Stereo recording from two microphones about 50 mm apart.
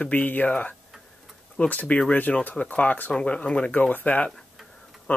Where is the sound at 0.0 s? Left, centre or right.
Left.